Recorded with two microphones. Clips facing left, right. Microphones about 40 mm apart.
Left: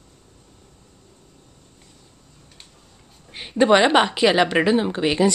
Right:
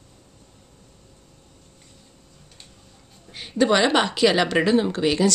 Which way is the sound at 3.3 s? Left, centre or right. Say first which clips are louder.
Left 4 dB; left.